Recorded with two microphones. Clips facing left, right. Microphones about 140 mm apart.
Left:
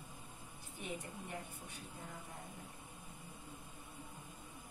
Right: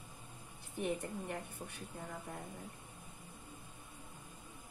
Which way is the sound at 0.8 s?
60° right (ahead or behind).